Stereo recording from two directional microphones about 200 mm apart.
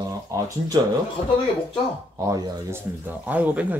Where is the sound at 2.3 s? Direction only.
15° right (ahead or behind).